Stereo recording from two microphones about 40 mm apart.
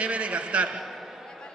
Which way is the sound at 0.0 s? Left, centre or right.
Right.